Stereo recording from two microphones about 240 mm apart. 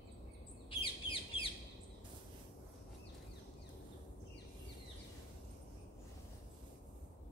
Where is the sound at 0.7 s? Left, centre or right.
Left.